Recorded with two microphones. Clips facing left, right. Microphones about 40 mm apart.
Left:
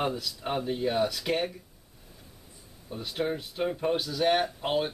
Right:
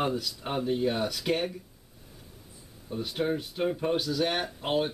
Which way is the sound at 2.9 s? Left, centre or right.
Centre.